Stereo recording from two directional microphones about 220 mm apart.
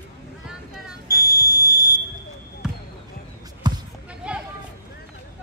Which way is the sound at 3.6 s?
20° right (ahead or behind).